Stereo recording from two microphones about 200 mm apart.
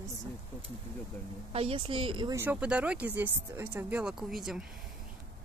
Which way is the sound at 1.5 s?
30° right (ahead or behind).